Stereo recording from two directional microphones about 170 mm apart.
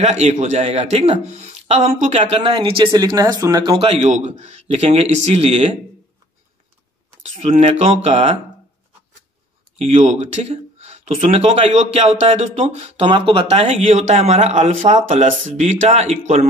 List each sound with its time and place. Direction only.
0.0 s speech: 45° right (ahead or behind)
7.3 s speech: 40° right (ahead or behind)
9.8 s speech: 40° right (ahead or behind)